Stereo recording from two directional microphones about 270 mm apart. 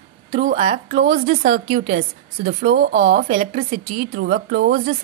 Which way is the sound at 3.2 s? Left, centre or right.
Right.